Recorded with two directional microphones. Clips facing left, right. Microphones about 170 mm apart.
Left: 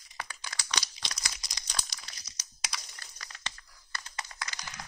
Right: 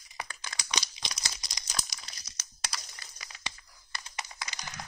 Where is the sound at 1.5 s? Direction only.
10° right (ahead or behind).